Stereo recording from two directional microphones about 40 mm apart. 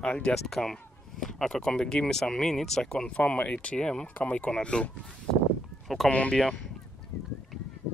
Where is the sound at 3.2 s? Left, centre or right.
Left.